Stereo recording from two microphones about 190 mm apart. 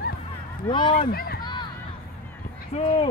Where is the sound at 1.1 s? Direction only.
55° left (ahead or behind).